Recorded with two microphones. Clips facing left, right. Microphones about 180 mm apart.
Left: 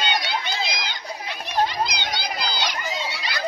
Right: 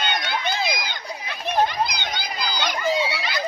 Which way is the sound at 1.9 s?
50° right (ahead or behind).